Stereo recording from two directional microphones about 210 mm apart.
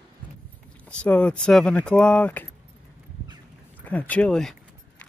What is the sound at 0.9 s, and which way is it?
Speech, 5° left (ahead or behind).